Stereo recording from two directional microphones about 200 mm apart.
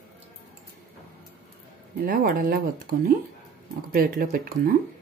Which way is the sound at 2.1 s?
45° right (ahead or behind).